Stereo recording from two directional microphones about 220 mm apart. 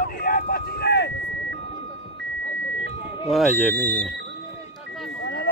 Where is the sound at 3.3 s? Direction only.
5° left (ahead or behind).